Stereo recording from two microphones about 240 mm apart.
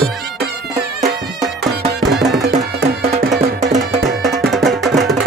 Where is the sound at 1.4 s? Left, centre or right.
Centre.